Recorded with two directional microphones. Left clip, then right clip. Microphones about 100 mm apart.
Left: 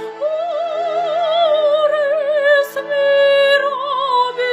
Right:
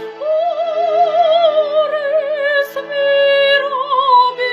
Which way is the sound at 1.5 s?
15° left (ahead or behind).